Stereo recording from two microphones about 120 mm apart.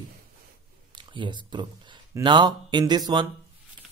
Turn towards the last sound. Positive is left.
turn(degrees=-35)  # may be behind; listen again after turning